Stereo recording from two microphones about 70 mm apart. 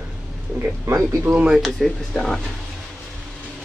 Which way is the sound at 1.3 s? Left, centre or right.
Centre.